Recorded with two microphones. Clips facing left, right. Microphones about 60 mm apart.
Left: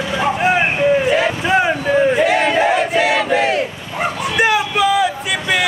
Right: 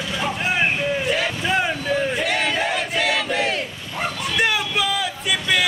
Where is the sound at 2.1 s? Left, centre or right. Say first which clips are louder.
Left 8 dB; centre.